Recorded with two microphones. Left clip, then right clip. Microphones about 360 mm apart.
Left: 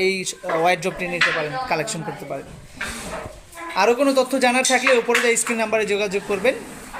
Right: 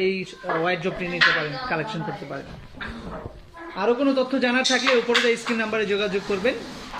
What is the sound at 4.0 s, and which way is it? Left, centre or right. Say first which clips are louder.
Speech: left 4 dB; centre.